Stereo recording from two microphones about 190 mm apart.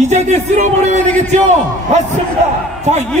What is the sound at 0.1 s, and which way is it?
A man's voice, 40° right (ahead or behind).